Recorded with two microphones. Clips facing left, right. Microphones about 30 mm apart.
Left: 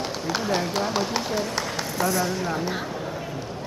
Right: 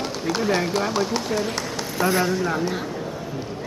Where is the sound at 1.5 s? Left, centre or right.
Centre.